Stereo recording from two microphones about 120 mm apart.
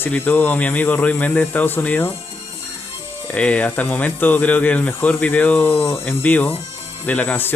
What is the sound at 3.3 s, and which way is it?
Speech, 10° left (ahead or behind).